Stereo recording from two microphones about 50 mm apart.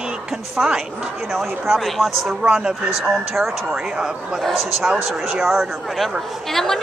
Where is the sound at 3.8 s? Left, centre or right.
Centre.